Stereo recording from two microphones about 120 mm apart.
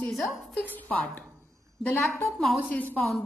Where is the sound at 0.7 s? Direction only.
15° left (ahead or behind).